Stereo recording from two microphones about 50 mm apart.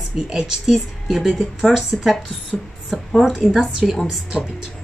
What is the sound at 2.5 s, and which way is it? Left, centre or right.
Speech, left.